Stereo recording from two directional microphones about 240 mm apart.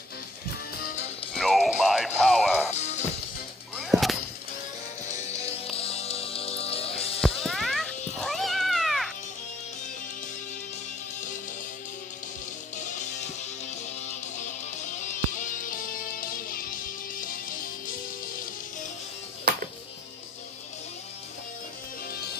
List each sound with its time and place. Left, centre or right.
1.3 s music: centre
2.7 s music: left
3.7 s whip: centre
5.0 s music: left
7.2 s music: centre
8.2 s cat: centre
15.0 s music: left